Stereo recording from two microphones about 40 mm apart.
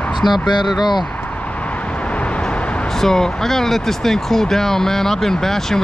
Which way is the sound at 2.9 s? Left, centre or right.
Centre.